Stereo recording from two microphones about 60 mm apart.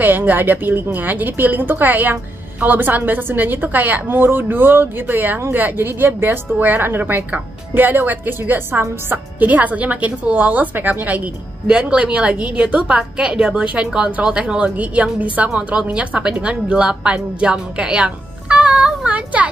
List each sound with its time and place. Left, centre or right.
0.0 s a woman's voice: right